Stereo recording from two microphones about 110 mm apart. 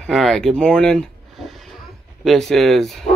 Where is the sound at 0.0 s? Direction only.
5° left (ahead or behind).